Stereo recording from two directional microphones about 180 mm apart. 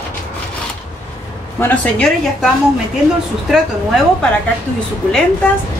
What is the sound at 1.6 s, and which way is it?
Speech, 10° left (ahead or behind).